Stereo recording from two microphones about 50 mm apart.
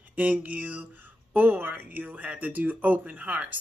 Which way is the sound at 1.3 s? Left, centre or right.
Right.